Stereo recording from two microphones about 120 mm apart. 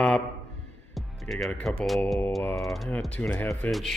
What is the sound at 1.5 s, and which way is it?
Speech, 10° left (ahead or behind).